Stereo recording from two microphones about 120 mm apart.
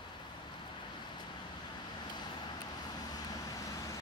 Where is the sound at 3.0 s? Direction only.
30° left (ahead or behind).